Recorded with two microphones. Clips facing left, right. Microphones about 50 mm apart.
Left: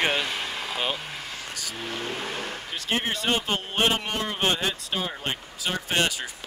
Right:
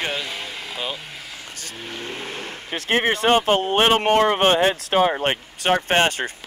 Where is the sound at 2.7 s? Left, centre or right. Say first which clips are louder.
Right 8 dB; right.